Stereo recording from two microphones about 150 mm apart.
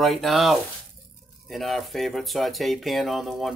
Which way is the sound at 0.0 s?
Centre (ahead or behind).